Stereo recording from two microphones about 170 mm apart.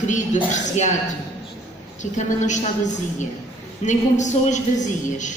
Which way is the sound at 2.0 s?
45° left (ahead or behind).